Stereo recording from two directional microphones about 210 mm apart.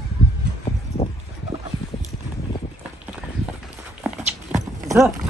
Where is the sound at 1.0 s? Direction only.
25° left (ahead or behind).